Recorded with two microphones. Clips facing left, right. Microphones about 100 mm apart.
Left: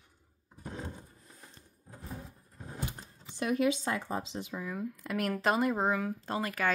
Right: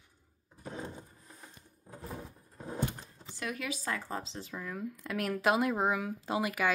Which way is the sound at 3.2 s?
25° left (ahead or behind).